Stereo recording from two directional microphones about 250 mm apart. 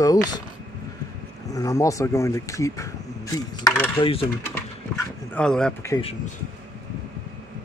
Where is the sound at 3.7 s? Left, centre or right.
Centre.